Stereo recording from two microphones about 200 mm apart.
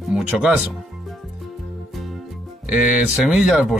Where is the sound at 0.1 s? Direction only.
5° right (ahead or behind).